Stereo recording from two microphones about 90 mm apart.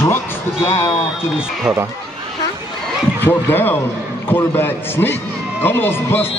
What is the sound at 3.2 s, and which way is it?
Speech, 20° left (ahead or behind).